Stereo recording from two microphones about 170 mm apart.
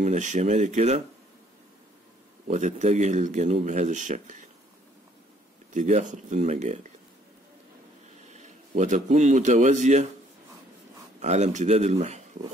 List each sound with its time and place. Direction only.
0.0 s speech: 45° right (ahead or behind)
2.5 s speech: 45° right (ahead or behind)
5.7 s speech: 45° right (ahead or behind)
8.7 s speech: 45° right (ahead or behind)
11.1 s speech: 40° right (ahead or behind)